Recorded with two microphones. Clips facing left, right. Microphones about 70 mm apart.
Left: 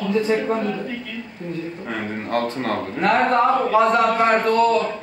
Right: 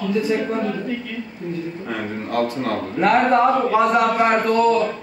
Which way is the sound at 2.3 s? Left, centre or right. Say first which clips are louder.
Right 1 dB; left.